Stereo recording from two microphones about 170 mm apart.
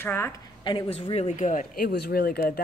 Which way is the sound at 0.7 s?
30° left (ahead or behind).